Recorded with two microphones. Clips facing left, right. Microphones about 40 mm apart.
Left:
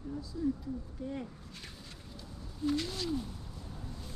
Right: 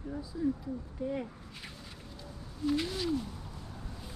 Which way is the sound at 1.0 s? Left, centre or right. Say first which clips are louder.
Right 6 dB; centre.